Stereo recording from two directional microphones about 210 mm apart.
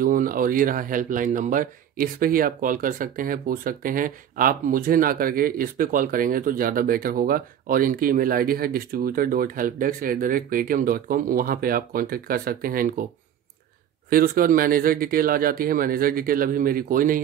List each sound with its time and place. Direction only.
0.0 s speech: 40° right (ahead or behind)
14.1 s speech: 45° right (ahead or behind)